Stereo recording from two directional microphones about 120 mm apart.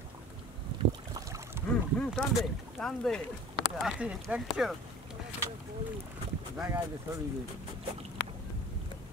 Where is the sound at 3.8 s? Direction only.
5° right (ahead or behind).